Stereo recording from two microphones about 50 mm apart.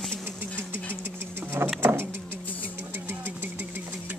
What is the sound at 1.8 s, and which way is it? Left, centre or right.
Vehicle, right.